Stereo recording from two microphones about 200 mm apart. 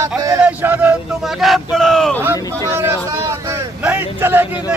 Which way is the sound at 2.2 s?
10° right (ahead or behind).